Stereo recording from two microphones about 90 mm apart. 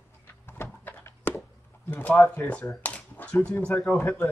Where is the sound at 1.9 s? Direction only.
20° left (ahead or behind).